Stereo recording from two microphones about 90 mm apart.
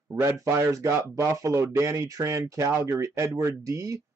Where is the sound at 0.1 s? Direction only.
30° right (ahead or behind).